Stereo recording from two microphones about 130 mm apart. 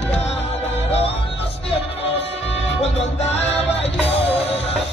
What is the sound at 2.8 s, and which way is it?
Music, 55° left (ahead or behind).